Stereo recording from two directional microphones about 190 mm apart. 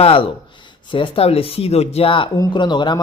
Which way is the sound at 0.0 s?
30° left (ahead or behind).